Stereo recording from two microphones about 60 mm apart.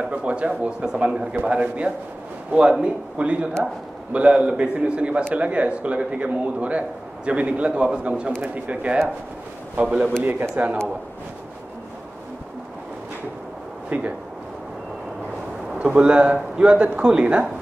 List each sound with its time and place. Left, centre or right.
0.0 s a man's voice: centre
13.8 s speech: right
15.8 s a man's voice: centre